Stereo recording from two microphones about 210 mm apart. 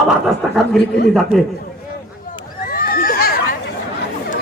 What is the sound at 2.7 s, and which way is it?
Neigh, 45° left (ahead or behind).